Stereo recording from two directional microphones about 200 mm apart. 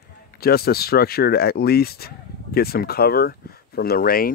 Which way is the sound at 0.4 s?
50° left (ahead or behind).